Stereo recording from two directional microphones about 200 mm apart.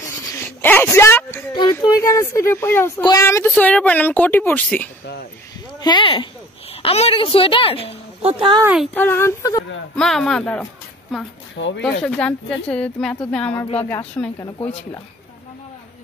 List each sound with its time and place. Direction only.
0.6 s speech: 10° left (ahead or behind)
5.8 s speech: 20° left (ahead or behind)
8.2 s speech: 30° right (ahead or behind)
8.9 s speech: 10° left (ahead or behind)
9.9 s a woman's voice: centre (ahead or behind)
11.5 s speech: 65° left (ahead or behind)
11.8 s speech: 5° left (ahead or behind)